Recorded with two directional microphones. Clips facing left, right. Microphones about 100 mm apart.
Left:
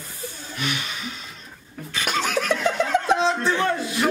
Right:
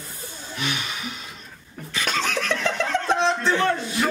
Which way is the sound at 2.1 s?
10° left (ahead or behind).